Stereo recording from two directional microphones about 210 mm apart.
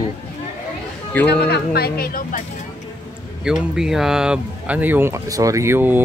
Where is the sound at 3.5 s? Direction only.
5° right (ahead or behind).